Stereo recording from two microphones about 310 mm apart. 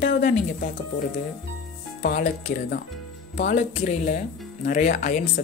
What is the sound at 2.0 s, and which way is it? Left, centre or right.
Speech, left.